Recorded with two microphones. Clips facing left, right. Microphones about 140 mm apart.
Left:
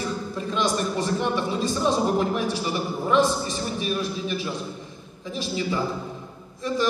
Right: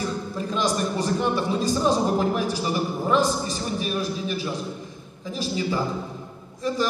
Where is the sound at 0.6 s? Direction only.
35° right (ahead or behind).